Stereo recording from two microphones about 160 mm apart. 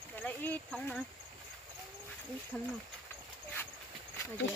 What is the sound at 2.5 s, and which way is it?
Speech, 10° left (ahead or behind).